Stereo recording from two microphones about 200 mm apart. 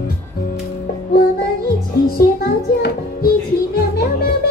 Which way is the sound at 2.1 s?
50° left (ahead or behind).